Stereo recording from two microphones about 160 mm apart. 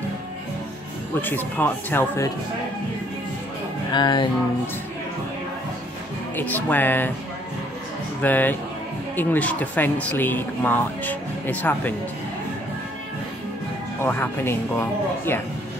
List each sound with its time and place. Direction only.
1.2 s speech: 10° left (ahead or behind)
3.9 s music: 30° left (ahead or behind)
6.3 s speech: 10° left (ahead or behind)
8.2 s speech: 10° left (ahead or behind)
14.0 s speech: 15° left (ahead or behind)